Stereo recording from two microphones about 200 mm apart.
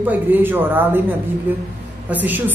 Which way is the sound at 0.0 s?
10° right (ahead or behind).